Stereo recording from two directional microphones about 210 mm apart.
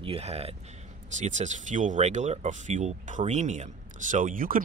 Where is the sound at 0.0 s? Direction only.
30° right (ahead or behind).